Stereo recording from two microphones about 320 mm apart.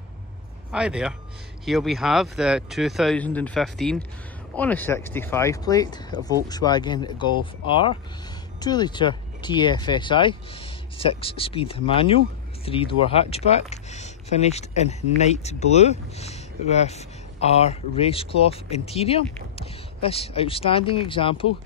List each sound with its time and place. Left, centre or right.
0.7 s speech: centre